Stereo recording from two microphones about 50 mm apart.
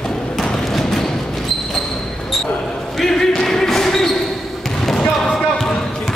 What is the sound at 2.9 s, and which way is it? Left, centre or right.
Basketball bounce, centre.